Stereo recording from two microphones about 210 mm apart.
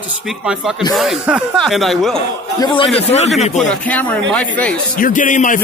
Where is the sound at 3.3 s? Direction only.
Centre (ahead or behind).